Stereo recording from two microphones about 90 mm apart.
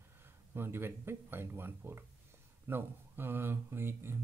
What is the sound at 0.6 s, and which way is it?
Speech, 25° right (ahead or behind).